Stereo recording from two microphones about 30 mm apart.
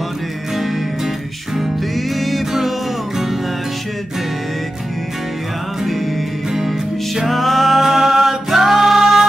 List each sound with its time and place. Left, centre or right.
2.0 s music: centre
7.2 s music: centre
8.3 s singing: centre